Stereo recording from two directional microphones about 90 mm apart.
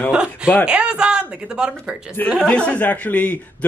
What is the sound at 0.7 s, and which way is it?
Speech, 10° right (ahead or behind).